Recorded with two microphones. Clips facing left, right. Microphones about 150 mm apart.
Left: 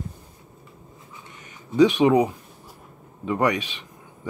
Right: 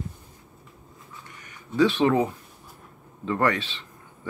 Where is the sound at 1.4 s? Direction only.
15° left (ahead or behind).